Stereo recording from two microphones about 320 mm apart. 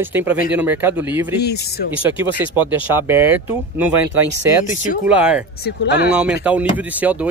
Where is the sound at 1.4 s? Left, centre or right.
Left.